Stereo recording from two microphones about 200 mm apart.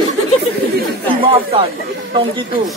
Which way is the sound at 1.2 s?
30° right (ahead or behind).